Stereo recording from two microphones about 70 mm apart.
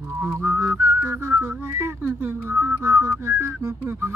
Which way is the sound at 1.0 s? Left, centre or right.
Right.